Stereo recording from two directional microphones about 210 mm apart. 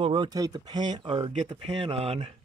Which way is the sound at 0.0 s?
20° right (ahead or behind).